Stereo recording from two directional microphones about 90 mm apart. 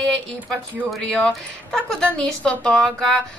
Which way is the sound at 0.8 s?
5° left (ahead or behind).